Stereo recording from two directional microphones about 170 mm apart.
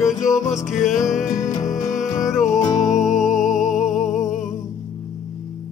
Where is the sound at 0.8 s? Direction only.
45° left (ahead or behind).